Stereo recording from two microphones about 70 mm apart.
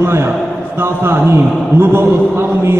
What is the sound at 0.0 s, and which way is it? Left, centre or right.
A man's voice, right.